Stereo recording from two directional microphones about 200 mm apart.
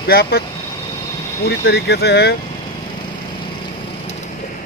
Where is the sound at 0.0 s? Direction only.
50° left (ahead or behind).